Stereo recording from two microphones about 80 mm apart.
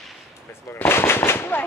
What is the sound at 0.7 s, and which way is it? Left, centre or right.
Speech, left.